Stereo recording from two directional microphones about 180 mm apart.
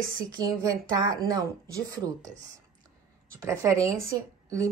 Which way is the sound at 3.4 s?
15° right (ahead or behind).